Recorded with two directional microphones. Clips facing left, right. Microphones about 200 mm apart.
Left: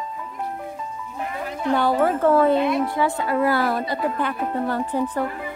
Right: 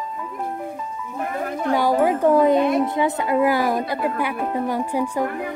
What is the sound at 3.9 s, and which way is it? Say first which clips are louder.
Music: right 1 dB; 10° right (ahead or behind).